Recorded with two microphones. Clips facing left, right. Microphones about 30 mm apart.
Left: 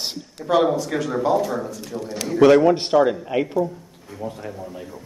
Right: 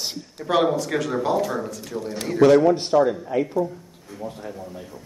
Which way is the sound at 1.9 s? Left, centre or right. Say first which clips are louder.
Even; left.